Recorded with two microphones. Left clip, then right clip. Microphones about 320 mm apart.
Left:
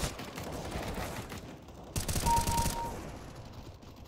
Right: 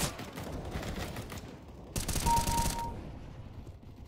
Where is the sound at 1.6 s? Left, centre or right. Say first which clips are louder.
Left 2 dB; centre.